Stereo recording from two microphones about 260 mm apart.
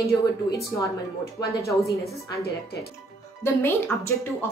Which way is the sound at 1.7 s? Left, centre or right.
Centre.